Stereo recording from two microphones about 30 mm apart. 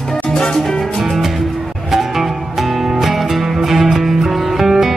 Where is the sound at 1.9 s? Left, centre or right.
Centre.